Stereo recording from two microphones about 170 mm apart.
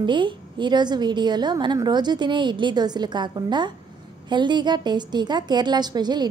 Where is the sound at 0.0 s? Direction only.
30° right (ahead or behind).